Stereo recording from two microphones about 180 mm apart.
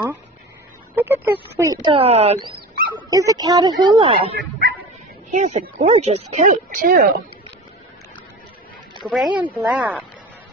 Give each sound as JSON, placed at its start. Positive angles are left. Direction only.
{"t": 0.9, "sound": "a sound", "side_deg": -15}
{"t": 2.0, "sound": "speech", "side_deg": -35}
{"t": 3.1, "sound": "speech", "side_deg": -20}
{"t": 4.4, "sound": "dog", "side_deg": -60}
{"t": 5.3, "sound": "speech", "side_deg": -40}
{"t": 9.4, "sound": "speech", "side_deg": -5}